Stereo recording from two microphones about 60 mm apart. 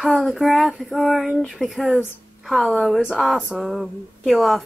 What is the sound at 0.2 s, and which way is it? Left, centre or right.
A woman's voice, centre.